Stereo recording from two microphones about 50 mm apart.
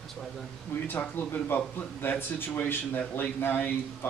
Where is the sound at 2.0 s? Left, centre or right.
Left.